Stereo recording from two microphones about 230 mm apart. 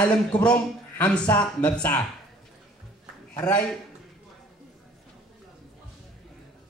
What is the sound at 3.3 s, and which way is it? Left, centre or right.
Speech, centre.